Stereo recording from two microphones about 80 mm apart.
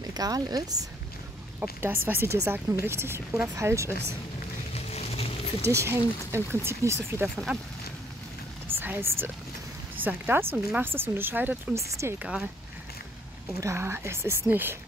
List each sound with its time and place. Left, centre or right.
0.1 s speech: right
1.6 s speech: right
5.7 s speech: right
7.5 s speech: centre
8.6 s a sound: right
9.9 s speech: right
11.7 s speech: right
12.2 s speech: centre
13.6 s speech: right